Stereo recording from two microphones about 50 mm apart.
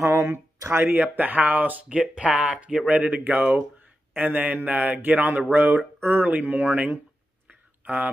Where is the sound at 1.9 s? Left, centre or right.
Right.